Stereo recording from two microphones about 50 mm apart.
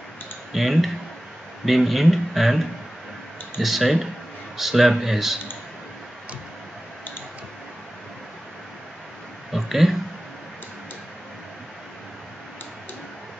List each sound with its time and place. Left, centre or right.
0.5 s speech: centre
3.6 s speech: centre
9.5 s a sound: centre